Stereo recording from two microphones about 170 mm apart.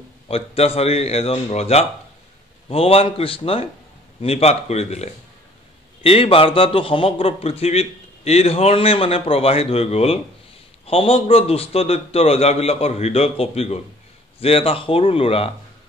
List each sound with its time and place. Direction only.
0.3 s a man's voice: 35° left (ahead or behind)